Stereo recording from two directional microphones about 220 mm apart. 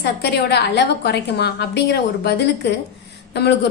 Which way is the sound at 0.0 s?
45° left (ahead or behind).